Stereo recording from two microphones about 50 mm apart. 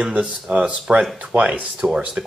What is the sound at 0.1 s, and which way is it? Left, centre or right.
Speech, right.